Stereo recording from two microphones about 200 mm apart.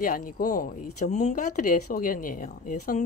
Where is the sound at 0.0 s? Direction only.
45° left (ahead or behind).